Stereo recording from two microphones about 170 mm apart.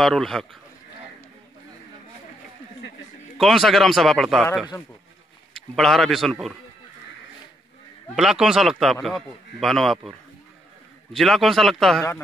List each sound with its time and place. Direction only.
0.0 s speech: centre (ahead or behind)
3.3 s speech: centre (ahead or behind)
5.5 s a man's voice: centre (ahead or behind)
8.2 s speech: 5° right (ahead or behind)
11.1 s speech: centre (ahead or behind)